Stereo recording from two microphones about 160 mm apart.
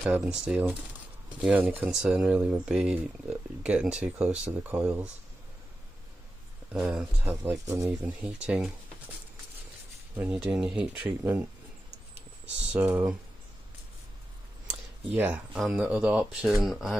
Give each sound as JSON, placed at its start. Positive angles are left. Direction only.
{"t": 0.0, "sound": "speech", "side_deg": -5}
{"t": 6.7, "sound": "speech", "side_deg": -5}
{"t": 7.2, "sound": "speech", "side_deg": -15}
{"t": 8.2, "sound": "speech", "side_deg": -5}
{"t": 10.4, "sound": "speech", "side_deg": -5}
{"t": 12.7, "sound": "speech", "side_deg": -10}
{"t": 15.0, "sound": "speech", "side_deg": -10}